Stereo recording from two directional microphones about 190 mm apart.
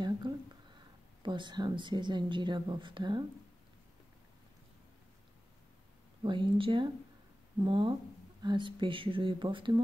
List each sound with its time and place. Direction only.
0.2 s a sound: 25° right (ahead or behind)
1.2 s a woman's voice: 25° right (ahead or behind)
6.2 s a woman's voice: 25° right (ahead or behind)